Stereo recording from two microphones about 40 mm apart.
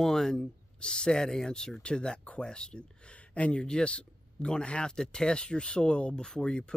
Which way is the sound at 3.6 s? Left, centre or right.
Left.